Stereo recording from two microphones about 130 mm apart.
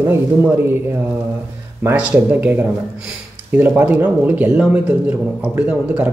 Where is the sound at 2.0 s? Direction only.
15° right (ahead or behind).